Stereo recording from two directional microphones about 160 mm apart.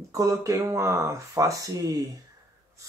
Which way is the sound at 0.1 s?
20° right (ahead or behind).